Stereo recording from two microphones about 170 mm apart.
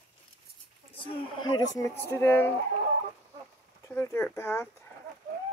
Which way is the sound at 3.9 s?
15° left (ahead or behind).